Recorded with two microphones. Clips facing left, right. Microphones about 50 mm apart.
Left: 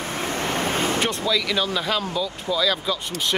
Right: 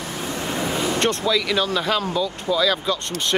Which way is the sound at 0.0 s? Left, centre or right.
Left.